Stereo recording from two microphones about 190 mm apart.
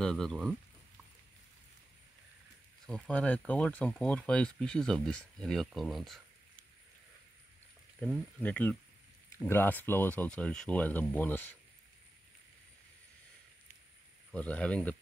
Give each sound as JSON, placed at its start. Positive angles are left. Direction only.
{"t": 0.0, "sound": "speech", "side_deg": 5}
{"t": 2.9, "sound": "speech", "side_deg": 5}
{"t": 8.0, "sound": "speech", "side_deg": 5}
{"t": 14.3, "sound": "speech", "side_deg": 5}